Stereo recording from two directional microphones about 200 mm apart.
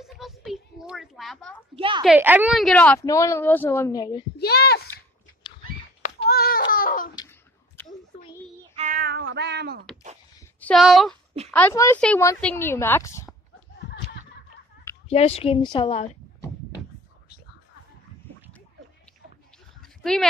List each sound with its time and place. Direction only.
0.0 s a sound: centre (ahead or behind)
1.8 s a woman's voice: 25° right (ahead or behind)
2.0 s a woman's voice: 10° right (ahead or behind); by 4.3 s 20° left (ahead or behind)
4.4 s a child's voice: 55° left (ahead or behind)
6.0 s child singing: 50° left (ahead or behind)
6.7 s baby cry: 45° left (ahead or behind)
7.2 s a sound: 10° left (ahead or behind)
8.7 s cat: 45° right (ahead or behind)
10.6 s speech: centre (ahead or behind)
11.5 s a woman's voice: 10° left (ahead or behind)
15.0 s speech: 30° left (ahead or behind)
19.8 s a sound: centre (ahead or behind)